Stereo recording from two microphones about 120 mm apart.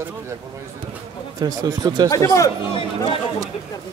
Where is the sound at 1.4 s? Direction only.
35° right (ahead or behind).